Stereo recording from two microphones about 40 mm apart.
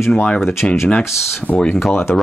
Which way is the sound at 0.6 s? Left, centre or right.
Left.